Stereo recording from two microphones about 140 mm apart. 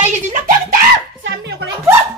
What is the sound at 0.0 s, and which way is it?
Screaming, 75° right (ahead or behind).